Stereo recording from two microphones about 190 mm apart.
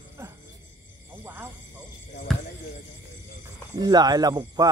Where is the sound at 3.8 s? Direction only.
20° right (ahead or behind).